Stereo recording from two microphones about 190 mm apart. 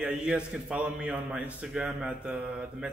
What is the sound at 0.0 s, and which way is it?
A man's voice, 5° right (ahead or behind).